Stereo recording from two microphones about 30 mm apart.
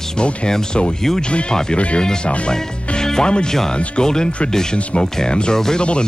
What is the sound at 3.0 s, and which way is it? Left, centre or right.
Music, left.